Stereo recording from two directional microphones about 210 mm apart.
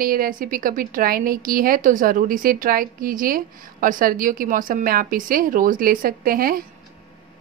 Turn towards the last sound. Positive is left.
turn(degrees=-45)  # may be behind; listen again after turning